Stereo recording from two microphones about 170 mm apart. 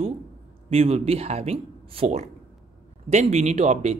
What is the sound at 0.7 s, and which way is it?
Speech, 35° right (ahead or behind).